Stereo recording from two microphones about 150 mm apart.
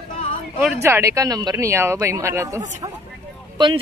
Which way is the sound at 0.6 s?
15° right (ahead or behind).